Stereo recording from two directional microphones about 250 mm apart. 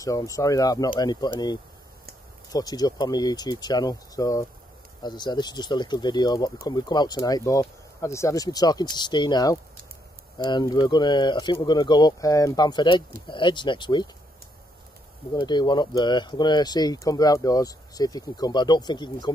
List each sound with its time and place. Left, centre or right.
0.0 s speech: centre
15.3 s speech: centre